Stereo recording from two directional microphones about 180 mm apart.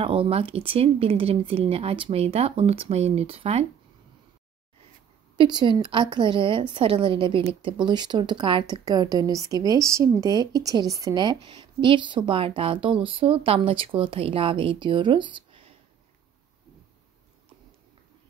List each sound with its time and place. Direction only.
0.0 s speech: 30° right (ahead or behind)
5.4 s a woman's voice: 25° right (ahead or behind)